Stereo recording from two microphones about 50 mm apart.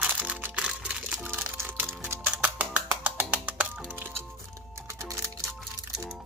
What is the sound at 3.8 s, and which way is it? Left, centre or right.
Music, right.